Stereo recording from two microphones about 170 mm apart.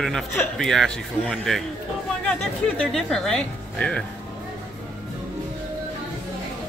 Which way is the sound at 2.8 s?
Centre (ahead or behind).